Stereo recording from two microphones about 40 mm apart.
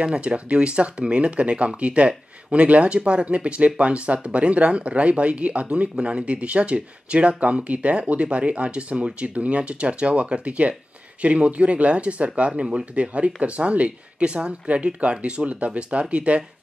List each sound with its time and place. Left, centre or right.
0.0 s speech: right